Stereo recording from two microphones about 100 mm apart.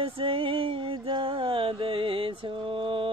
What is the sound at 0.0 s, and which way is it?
Music, 65° right (ahead or behind).